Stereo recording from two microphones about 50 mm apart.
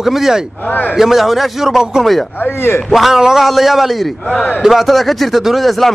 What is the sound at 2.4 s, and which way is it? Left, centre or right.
Speech, left.